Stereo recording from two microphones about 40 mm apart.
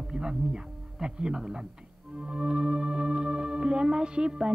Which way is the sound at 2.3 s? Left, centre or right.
Right.